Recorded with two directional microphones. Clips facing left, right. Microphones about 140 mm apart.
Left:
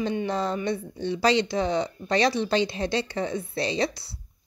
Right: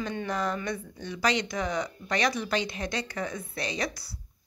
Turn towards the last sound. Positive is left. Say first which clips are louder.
# left 6 dB
turn(degrees=30)  # may be behind; listen again after turning